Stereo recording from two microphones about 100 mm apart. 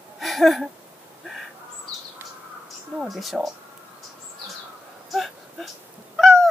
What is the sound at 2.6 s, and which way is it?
Speech, centre (ahead or behind).